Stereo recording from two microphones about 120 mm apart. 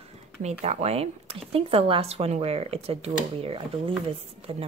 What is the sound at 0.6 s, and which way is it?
A woman's voice, 60° right (ahead or behind).